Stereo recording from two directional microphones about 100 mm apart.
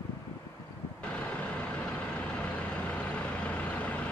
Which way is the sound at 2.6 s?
15° left (ahead or behind).